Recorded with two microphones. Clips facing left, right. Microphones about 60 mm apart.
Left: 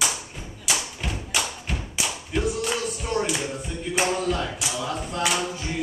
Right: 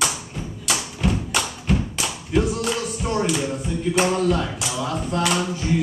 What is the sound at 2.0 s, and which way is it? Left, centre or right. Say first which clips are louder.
Clapping: right 3 dB; centre.